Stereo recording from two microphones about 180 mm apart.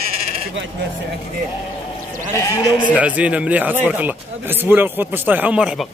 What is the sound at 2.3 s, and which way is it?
Speech, 20° left (ahead or behind).